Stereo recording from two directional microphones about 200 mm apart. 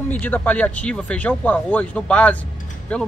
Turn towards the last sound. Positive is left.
turn(degrees=5)  # may be behind; listen again after turning